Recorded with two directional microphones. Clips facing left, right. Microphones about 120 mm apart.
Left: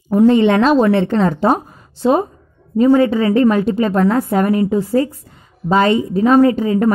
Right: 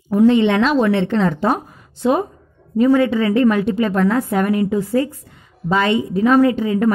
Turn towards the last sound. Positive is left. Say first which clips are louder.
# left 2 dB
turn(degrees=35)  # may be behind; listen again after turning